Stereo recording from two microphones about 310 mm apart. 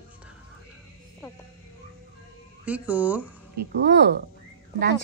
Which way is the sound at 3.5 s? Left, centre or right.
Right.